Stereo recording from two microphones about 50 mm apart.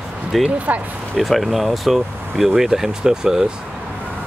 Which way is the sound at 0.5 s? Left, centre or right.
Right.